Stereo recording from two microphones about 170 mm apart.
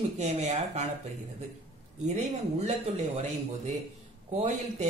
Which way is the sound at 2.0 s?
45° right (ahead or behind).